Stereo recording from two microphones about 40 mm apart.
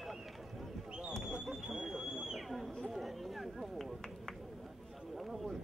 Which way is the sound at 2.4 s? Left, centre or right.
Centre.